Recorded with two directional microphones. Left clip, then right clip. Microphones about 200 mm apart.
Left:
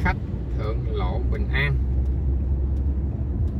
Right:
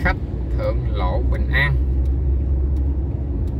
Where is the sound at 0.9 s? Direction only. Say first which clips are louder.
Right 5 dB; 40° right (ahead or behind).